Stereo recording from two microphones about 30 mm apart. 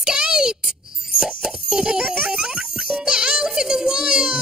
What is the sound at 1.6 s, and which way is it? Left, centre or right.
Music, right.